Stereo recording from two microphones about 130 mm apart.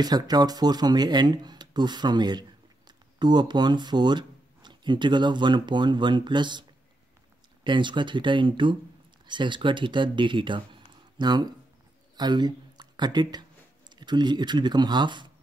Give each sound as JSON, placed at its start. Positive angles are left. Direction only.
{"t": 0.0, "sound": "speech", "side_deg": -30}
{"t": 7.6, "sound": "speech", "side_deg": -35}